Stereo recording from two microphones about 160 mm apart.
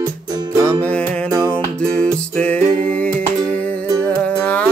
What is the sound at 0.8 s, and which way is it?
Music, 10° left (ahead or behind).